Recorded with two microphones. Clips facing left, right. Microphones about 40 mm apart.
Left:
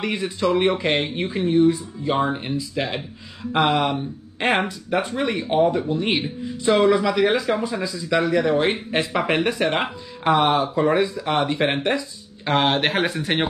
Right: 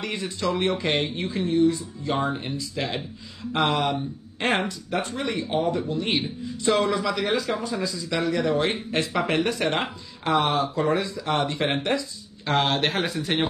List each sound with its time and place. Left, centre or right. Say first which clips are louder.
0.0 s speech: left 5 dB; centre